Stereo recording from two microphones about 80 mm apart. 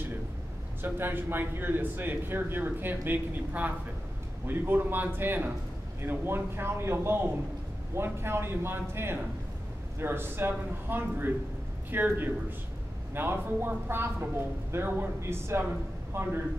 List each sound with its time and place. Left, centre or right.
0.8 s a man's voice: right